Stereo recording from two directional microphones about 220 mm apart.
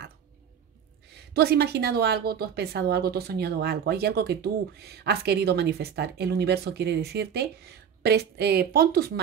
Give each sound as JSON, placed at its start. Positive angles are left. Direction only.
{"t": 1.1, "sound": "a woman's voice", "side_deg": -45}